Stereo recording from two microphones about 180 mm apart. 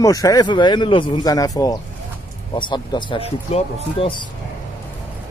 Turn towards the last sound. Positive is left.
turn(degrees=30)  # may be behind; listen again after turning